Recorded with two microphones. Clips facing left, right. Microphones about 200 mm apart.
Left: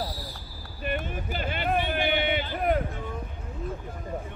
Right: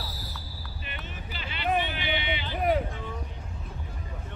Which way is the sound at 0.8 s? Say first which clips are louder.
Left 12 dB; 50° left (ahead or behind).